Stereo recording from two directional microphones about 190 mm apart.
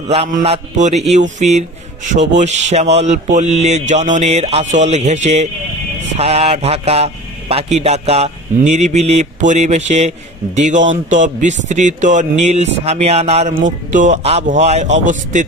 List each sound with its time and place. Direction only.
0.1 s a man's voice: 35° right (ahead or behind)